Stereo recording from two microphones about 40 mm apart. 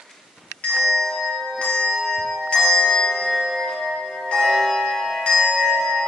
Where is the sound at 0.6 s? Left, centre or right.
Centre.